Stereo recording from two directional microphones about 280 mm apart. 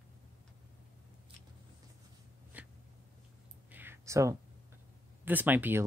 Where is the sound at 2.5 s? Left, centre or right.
Centre.